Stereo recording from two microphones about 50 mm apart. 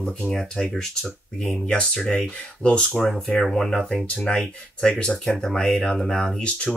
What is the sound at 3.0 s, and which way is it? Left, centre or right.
Speech, centre.